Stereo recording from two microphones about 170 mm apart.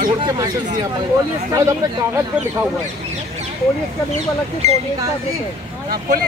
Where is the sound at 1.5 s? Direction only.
15° right (ahead or behind).